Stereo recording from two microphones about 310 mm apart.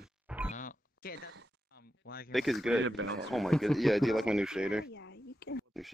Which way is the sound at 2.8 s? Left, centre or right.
Right.